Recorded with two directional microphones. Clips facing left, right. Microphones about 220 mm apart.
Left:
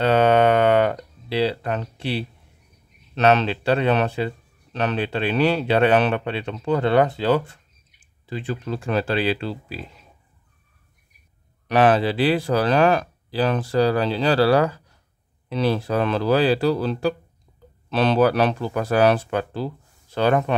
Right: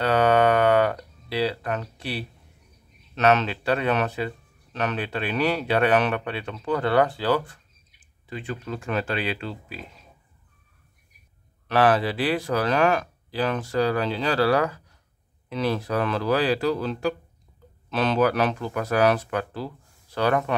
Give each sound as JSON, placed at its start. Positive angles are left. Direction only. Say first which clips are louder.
{"t": 0.0, "sound": "a sound", "louder": "left 3 dB", "side_deg": 25}
{"t": 3.2, "sound": "speech", "louder": "left 3 dB", "side_deg": 30}
{"t": 11.6, "sound": "speech", "louder": "left 3 dB", "side_deg": 20}